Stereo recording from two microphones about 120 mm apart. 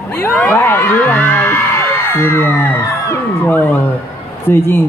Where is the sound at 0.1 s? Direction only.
15° left (ahead or behind).